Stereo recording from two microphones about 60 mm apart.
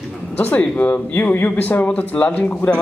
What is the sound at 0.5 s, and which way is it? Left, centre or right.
Speech, left.